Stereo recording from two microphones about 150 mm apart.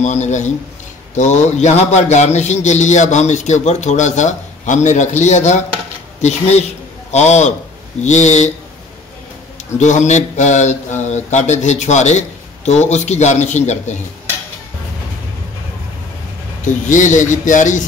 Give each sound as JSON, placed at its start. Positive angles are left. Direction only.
{"t": 0.0, "sound": "a man's voice", "side_deg": 50}
{"t": 9.8, "sound": "a man's voice", "side_deg": 50}
{"t": 16.6, "sound": "a man's voice", "side_deg": 55}